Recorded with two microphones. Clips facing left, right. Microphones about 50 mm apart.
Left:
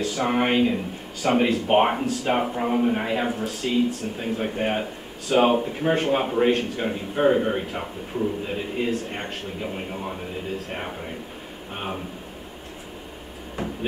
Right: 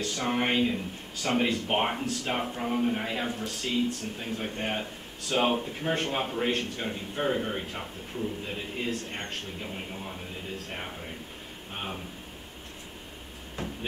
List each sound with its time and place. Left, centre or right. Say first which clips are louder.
0.0 s speech: left 6 dB; centre
3.3 s speech: left 6 dB; centre